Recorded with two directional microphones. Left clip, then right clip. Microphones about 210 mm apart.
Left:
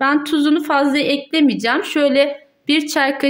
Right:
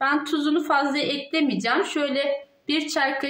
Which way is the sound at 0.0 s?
55° left (ahead or behind).